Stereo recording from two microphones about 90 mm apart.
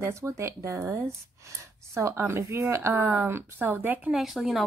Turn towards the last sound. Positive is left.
turn(degrees=-5)  # may be behind; listen again after turning